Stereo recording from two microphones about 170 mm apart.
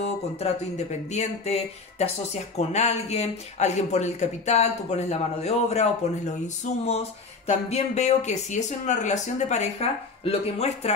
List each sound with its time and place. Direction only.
0.4 s speech: 40° left (ahead or behind)